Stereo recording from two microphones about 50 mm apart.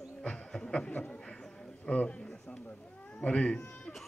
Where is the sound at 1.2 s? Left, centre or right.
Centre.